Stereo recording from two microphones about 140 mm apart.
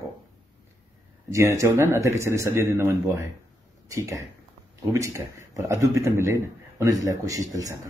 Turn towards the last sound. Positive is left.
turn(degrees=-25)  # may be behind; listen again after turning